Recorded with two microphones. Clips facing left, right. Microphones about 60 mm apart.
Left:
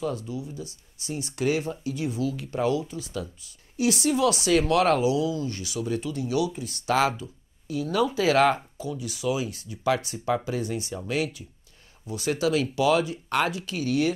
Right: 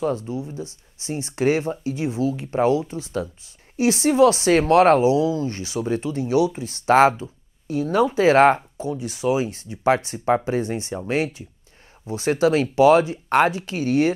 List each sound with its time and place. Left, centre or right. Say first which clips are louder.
0.0 s speech: right 6 dB; right